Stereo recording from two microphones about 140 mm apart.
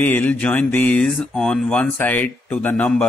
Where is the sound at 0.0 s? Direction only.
10° left (ahead or behind).